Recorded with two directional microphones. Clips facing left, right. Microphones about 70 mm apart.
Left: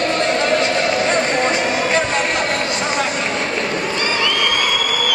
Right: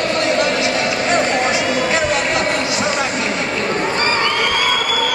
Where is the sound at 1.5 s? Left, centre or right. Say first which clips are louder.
Even; centre.